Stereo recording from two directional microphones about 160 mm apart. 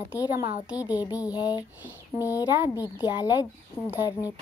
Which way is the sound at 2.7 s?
20° left (ahead or behind).